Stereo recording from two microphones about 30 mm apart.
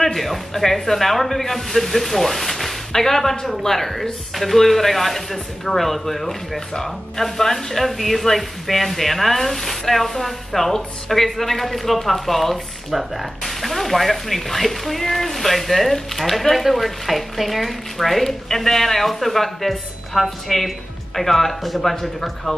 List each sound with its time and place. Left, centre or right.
0.0 s speech: centre